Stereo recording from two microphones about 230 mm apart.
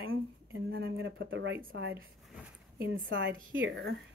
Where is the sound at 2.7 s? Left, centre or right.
Right.